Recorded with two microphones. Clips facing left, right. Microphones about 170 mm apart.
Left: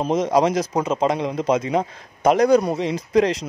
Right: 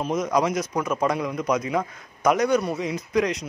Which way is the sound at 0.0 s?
30° left (ahead or behind).